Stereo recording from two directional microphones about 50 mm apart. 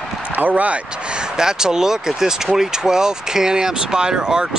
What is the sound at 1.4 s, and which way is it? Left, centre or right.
Speech, centre.